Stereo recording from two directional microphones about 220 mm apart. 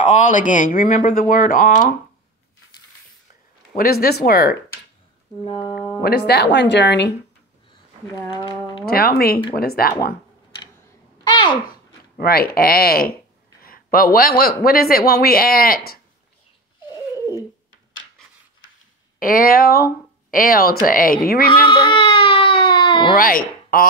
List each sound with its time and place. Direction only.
0.1 s speech: 35° left (ahead or behind)
3.7 s speech: 45° left (ahead or behind)
5.4 s speech: 25° left (ahead or behind)
6.0 s speech: 45° left (ahead or behind)
8.3 s speech: 20° left (ahead or behind)
8.8 s speech: 45° left (ahead or behind)
11.2 s babbling: 20° left (ahead or behind)
12.2 s speech: 45° left (ahead or behind)
18.2 s a sound: centre (ahead or behind)
19.1 s speech: 40° left (ahead or behind)
21.6 s baby cry: 20° left (ahead or behind)
23.1 s speech: 40° left (ahead or behind)